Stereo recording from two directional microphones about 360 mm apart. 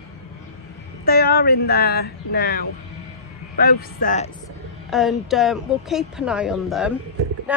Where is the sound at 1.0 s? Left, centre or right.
Left.